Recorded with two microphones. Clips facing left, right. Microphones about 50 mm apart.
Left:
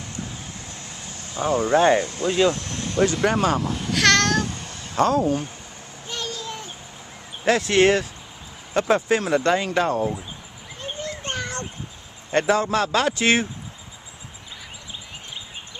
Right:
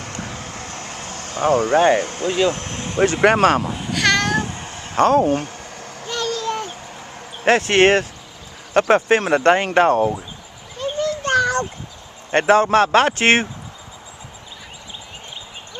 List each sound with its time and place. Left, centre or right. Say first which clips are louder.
0.0 s vehicle: right 4 dB; right
2.0 s speech: right 1 dB; right
3.3 s speech: right 6 dB; right
3.6 s speech: right 1 dB; centre
3.9 s babbling: even; centre
4.4 s meow: right 2 dB; right
7.4 s speech: right 3 dB; right
10.8 s children playing: right 10 dB; right
12.3 s speech: right 6 dB; right